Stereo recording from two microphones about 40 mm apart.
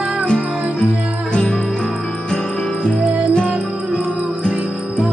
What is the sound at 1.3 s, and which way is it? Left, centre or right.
Music, centre.